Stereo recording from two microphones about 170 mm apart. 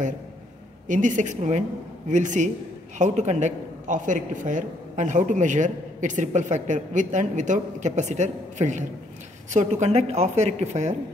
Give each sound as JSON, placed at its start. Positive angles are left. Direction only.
{"t": 0.8, "sound": "a man's voice", "side_deg": -50}